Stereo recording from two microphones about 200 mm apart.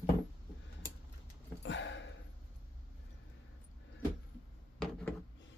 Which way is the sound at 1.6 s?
65° left (ahead or behind).